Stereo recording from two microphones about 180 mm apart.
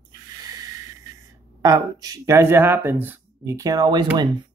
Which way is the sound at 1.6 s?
20° right (ahead or behind).